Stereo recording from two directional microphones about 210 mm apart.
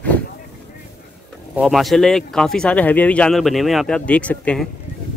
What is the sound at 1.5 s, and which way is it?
Speech, centre (ahead or behind).